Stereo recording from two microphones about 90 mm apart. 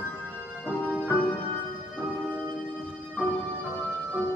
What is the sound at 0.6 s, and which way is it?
Music, 15° right (ahead or behind).